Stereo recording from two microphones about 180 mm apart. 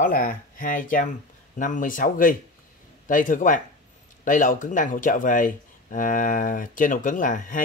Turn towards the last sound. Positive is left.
turn(degrees=45)  # may be behind; listen again after turning